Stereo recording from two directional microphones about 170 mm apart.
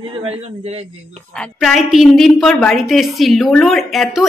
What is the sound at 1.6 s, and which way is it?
A woman's voice, centre (ahead or behind).